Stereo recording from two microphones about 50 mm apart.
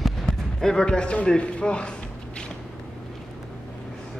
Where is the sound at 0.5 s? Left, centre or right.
Centre.